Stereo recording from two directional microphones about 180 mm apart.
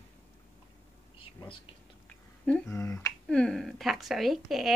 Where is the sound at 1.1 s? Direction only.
30° left (ahead or behind).